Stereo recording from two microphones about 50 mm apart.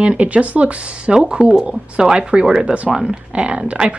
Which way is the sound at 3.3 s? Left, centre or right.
Centre.